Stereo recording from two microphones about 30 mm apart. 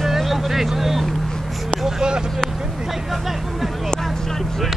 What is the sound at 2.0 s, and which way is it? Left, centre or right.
Vehicle, right.